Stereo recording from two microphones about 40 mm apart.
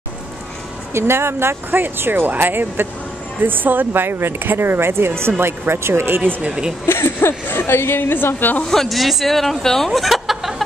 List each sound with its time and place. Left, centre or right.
0.9 s speech: right
6.9 s a woman's voice: left
8.6 s speech: centre